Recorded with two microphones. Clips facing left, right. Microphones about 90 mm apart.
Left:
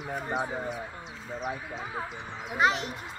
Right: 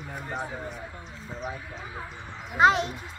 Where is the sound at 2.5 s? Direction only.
25° right (ahead or behind).